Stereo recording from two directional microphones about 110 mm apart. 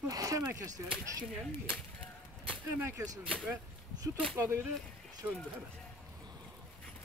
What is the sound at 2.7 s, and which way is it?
Speech, 20° right (ahead or behind).